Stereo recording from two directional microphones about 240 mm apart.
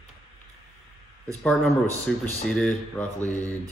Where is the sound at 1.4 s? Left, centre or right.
Centre.